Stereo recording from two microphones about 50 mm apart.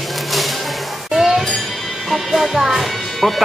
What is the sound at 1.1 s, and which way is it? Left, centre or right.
Music, centre.